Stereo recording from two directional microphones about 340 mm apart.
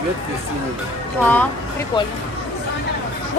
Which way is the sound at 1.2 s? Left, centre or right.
Centre.